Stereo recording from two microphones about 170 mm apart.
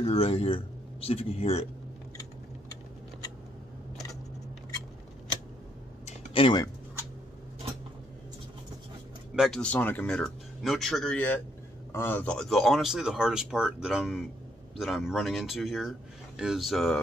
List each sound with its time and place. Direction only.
0.0 s speech: 35° left (ahead or behind)
6.0 s a sound: 30° left (ahead or behind)
9.3 s speech: centre (ahead or behind)